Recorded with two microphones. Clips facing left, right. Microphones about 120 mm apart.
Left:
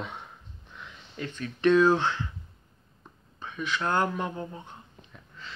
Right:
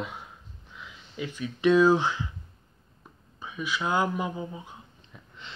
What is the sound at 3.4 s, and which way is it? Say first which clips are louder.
Speech: even; 10° right (ahead or behind).